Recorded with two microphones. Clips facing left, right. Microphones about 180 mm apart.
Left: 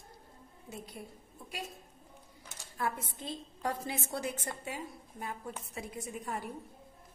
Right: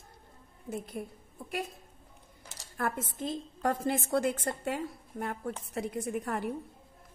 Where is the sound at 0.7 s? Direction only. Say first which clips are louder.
Right 8 dB; 50° right (ahead or behind).